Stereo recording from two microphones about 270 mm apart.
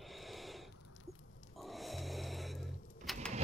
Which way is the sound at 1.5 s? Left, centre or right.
Centre.